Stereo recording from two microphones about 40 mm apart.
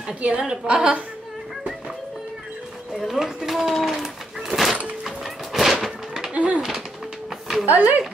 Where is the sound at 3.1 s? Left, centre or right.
Centre.